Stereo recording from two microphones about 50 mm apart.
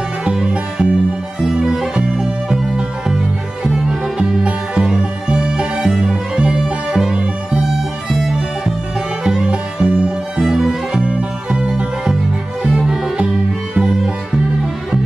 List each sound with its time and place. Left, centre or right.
0.2 s music: centre
10.4 s music: centre